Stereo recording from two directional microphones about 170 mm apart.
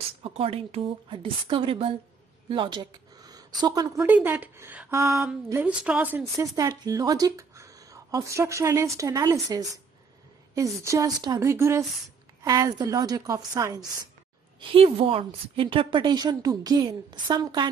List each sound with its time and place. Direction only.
0.2 s a woman's voice: 35° right (ahead or behind)
4.0 s speech: 10° right (ahead or behind)
14.6 s speech: 30° right (ahead or behind)